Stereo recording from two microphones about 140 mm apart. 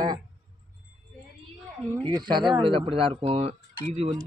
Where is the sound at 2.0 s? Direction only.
30° right (ahead or behind).